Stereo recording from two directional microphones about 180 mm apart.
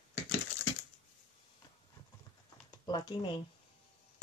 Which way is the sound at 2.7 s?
25° left (ahead or behind).